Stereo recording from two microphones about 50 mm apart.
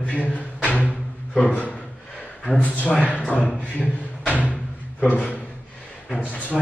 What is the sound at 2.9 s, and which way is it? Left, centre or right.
Speech, left.